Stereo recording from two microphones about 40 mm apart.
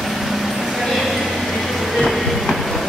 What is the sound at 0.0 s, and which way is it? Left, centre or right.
Vehicle, centre.